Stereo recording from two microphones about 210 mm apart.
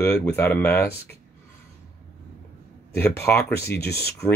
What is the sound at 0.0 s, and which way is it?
Speech, 15° left (ahead or behind).